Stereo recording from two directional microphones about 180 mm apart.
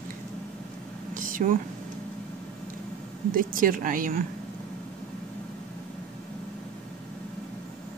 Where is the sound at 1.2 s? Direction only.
50° right (ahead or behind).